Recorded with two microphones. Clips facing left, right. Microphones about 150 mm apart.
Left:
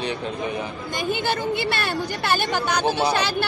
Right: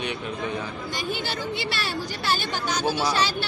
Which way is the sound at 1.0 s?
50° left (ahead or behind).